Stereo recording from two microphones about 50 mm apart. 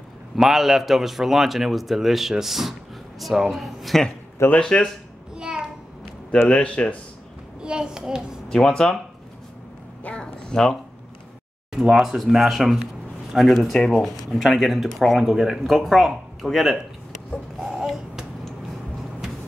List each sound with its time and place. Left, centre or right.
0.4 s a man's voice: centre
4.6 s speech: centre
5.3 s a sound: centre
6.5 s speech: left
7.6 s a child's voice: centre
8.5 s speech: centre
10.0 s a sound: centre
11.9 s a man's voice: centre
13.7 s speech: centre
14.4 s a man's voice: centre
17.6 s a sound: centre